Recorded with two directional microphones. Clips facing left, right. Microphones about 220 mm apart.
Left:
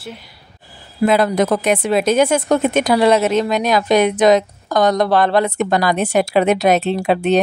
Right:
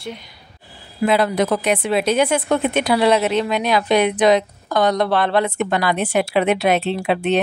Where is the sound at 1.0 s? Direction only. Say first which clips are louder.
Left 3 dB; 45° left (ahead or behind).